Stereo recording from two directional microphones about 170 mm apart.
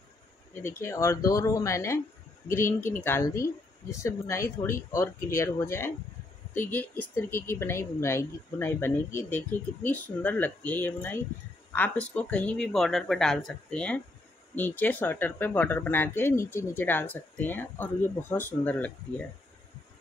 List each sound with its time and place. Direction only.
0.6 s speech: 15° left (ahead or behind)